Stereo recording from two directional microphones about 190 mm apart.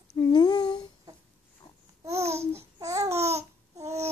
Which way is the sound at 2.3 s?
15° right (ahead or behind).